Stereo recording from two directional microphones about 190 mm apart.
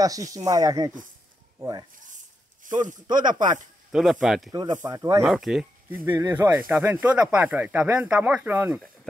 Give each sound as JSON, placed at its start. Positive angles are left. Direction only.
{"t": 0.0, "sound": "speech", "side_deg": -20}
{"t": 3.1, "sound": "speech", "side_deg": -25}
{"t": 3.9, "sound": "speech", "side_deg": 0}
{"t": 4.5, "sound": "speech", "side_deg": -20}
{"t": 5.2, "sound": "speech", "side_deg": 0}
{"t": 6.0, "sound": "speech", "side_deg": -15}